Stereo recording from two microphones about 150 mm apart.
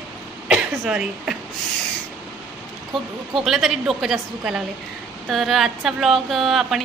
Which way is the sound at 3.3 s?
Centre (ahead or behind).